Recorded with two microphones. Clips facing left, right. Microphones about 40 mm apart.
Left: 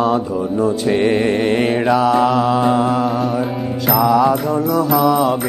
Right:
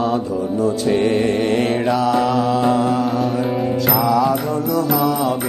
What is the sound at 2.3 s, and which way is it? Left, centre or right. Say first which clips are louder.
Mantra: left 2 dB; centre.